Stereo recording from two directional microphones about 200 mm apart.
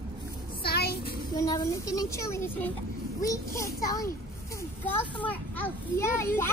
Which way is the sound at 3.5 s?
15° left (ahead or behind).